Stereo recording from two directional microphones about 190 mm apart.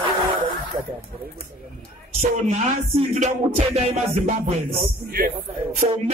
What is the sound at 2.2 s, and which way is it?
Music, 35° right (ahead or behind).